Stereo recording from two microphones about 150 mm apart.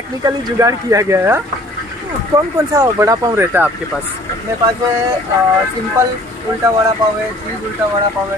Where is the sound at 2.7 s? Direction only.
20° right (ahead or behind).